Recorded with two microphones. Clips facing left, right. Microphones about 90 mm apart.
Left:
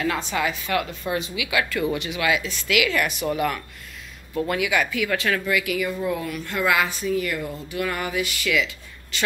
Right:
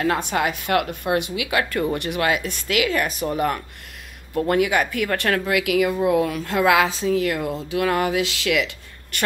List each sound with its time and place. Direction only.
0.0 s a woman's voice: 45° right (ahead or behind)
2.0 s a woman's voice: 55° right (ahead or behind)
5.5 s speech: 80° right
9.1 s a woman's voice: 55° right (ahead or behind)